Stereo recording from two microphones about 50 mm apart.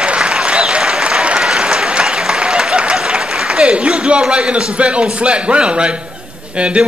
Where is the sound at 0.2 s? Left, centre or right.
Right.